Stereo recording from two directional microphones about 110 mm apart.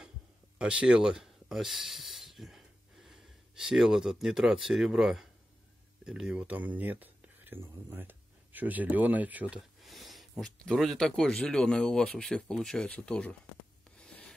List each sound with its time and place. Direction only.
0.6 s speech: 10° right (ahead or behind)
9.6 s speech: centre (ahead or behind)
13.9 s writing: 10° left (ahead or behind)